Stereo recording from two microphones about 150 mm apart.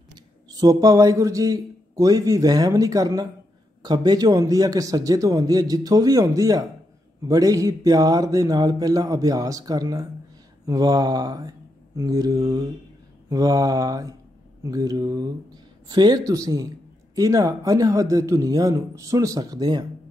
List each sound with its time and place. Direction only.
0.1 s a man's voice: 25° right (ahead or behind)
10.7 s mantra: 25° right (ahead or behind)
13.3 s a man's voice: 25° right (ahead or behind)